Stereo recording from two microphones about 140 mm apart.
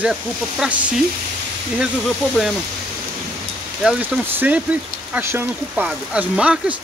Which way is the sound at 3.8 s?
10° right (ahead or behind).